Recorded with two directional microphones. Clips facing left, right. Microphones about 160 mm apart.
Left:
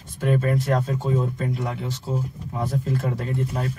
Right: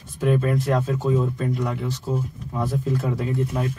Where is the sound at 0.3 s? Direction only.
Centre (ahead or behind).